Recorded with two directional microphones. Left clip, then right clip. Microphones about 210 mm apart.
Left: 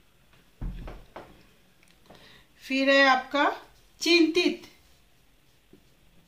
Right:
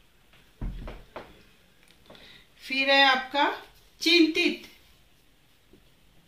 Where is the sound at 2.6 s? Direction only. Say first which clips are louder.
Even; 45° left (ahead or behind).